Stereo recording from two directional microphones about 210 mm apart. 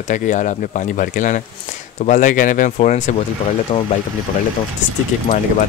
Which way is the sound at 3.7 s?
20° left (ahead or behind).